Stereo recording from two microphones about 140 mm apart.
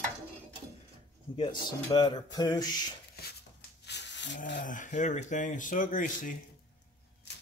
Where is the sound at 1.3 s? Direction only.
35° left (ahead or behind).